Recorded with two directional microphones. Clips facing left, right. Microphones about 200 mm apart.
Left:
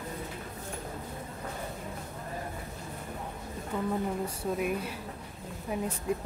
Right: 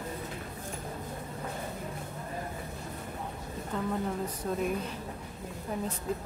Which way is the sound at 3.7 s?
10° left (ahead or behind).